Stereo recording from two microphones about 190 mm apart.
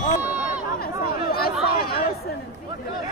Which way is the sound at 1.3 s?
55° left (ahead or behind).